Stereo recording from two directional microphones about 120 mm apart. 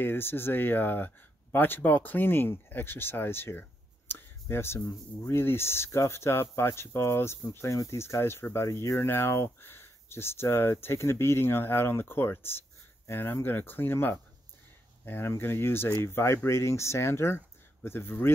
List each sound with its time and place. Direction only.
0.0 s speech: 20° left (ahead or behind)